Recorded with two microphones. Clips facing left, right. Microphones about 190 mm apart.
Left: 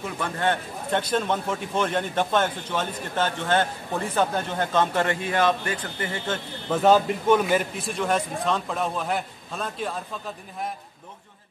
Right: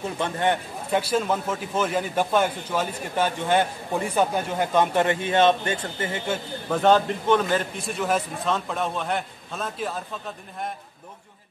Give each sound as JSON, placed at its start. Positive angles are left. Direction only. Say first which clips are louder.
{"t": 0.0, "sound": "a man's voice", "louder": "right 2 dB", "side_deg": -20}
{"t": 0.9, "sound": "a man's voice", "louder": "right 1 dB", "side_deg": -5}
{"t": 6.7, "sound": "a man's voice", "louder": "left 1 dB", "side_deg": 5}